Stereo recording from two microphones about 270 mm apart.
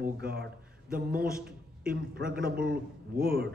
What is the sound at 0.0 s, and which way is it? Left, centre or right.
A man's voice, right.